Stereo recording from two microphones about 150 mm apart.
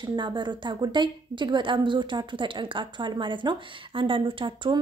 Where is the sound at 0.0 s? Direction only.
30° right (ahead or behind).